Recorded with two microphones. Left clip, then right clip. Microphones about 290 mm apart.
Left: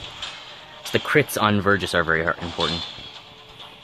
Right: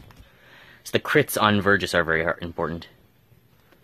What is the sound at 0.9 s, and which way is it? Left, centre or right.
Speech, centre.